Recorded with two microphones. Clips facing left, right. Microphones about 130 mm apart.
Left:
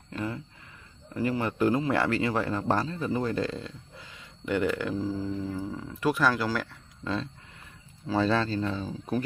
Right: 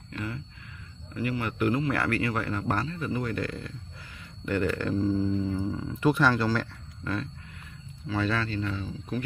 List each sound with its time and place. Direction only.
0.1 s a sound: 25° left (ahead or behind)
1.1 s a man's voice: 30° left (ahead or behind); by 6.7 s 5° left (ahead or behind)
8.1 s speech: 30° left (ahead or behind)